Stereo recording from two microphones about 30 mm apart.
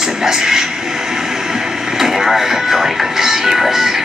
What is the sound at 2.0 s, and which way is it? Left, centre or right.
Speech, centre.